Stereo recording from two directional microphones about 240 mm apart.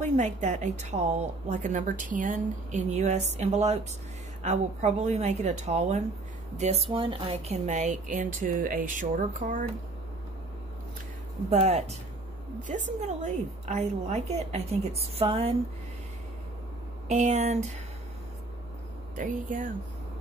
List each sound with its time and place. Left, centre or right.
0.0 s a woman's voice: right
11.5 s a woman's voice: right
17.1 s a woman's voice: right
19.1 s speech: right